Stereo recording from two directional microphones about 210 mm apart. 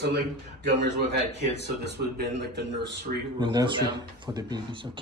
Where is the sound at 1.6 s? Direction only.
55° right (ahead or behind).